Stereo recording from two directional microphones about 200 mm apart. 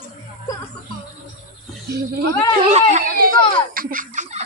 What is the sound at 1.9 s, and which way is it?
Speech, 55° right (ahead or behind).